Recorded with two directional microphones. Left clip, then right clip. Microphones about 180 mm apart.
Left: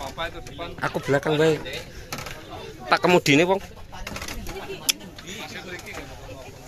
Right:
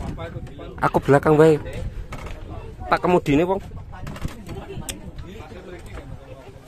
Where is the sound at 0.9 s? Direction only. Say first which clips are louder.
Right 7 dB; 35° right (ahead or behind).